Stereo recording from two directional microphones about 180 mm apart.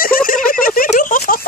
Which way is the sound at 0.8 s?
50° left (ahead or behind).